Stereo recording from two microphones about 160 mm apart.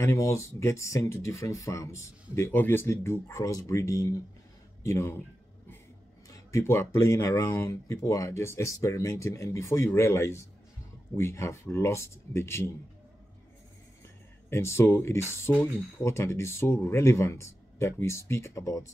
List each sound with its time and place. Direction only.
0.0 s speech: 20° left (ahead or behind)
6.3 s speech: 15° left (ahead or behind)
14.5 s speech: 15° left (ahead or behind)